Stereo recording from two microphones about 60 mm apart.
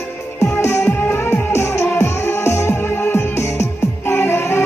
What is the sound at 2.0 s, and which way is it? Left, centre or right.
Music, left.